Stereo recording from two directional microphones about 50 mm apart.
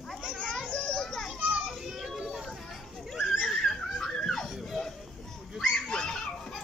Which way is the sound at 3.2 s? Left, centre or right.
Centre.